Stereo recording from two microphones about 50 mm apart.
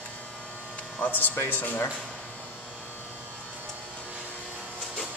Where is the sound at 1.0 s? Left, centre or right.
Left.